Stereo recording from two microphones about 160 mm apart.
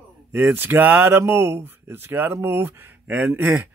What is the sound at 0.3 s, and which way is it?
Speech, 15° right (ahead or behind).